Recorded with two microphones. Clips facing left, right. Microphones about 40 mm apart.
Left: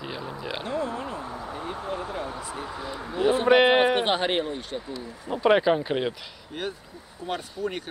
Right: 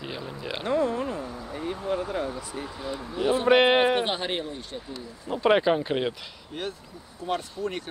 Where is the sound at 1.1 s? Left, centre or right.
Left.